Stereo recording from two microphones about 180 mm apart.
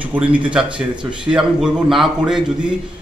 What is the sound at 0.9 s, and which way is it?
Speech, 25° right (ahead or behind).